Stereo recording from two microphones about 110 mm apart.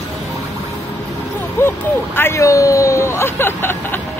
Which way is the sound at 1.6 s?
20° left (ahead or behind).